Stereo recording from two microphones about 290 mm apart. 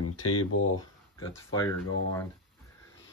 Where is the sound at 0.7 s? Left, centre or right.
Centre.